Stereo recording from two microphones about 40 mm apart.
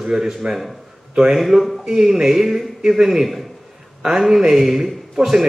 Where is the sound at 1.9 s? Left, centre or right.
Centre.